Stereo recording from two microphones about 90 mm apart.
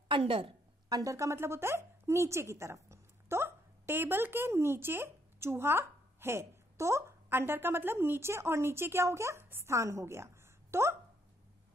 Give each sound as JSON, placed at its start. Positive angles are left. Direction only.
{"t": 0.1, "sound": "a woman's voice", "side_deg": -85}
{"t": 0.8, "sound": "speech", "side_deg": -40}